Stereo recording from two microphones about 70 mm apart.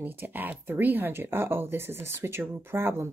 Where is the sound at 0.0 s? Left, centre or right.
Right.